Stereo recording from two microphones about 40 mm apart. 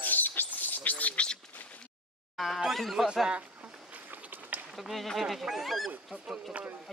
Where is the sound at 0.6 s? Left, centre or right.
Left.